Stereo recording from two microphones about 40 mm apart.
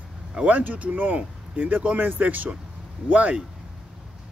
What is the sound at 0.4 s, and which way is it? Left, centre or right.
Speech, right.